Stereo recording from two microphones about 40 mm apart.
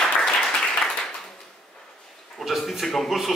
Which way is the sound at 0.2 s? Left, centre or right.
Centre.